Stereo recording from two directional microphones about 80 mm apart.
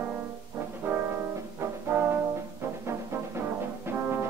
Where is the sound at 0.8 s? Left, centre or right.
Right.